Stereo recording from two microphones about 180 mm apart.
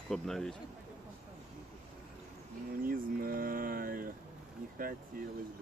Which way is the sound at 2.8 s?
50° right (ahead or behind).